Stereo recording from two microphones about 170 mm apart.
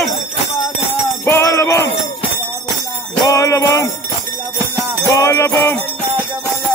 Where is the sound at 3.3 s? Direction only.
20° left (ahead or behind).